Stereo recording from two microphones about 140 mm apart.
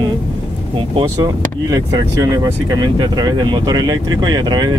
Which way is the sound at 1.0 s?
25° right (ahead or behind).